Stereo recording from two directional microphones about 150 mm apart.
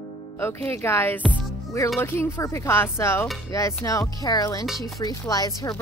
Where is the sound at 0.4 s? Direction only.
15° left (ahead or behind).